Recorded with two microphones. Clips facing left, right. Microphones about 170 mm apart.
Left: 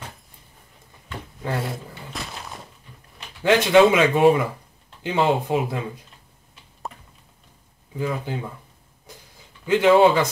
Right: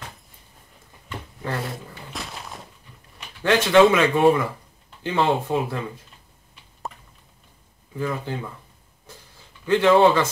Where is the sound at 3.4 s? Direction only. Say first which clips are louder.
Left 1 dB; 15° left (ahead or behind).